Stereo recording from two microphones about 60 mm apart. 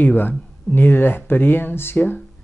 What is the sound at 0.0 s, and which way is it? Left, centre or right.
Speech, left.